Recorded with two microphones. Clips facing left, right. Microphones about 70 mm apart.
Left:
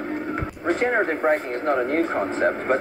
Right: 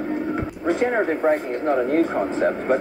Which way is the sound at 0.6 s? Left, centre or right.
Left.